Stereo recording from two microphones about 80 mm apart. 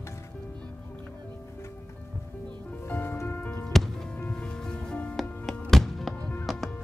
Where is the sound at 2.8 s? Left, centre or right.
Left.